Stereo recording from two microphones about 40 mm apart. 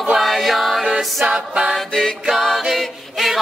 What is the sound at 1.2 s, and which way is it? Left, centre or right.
Music, centre.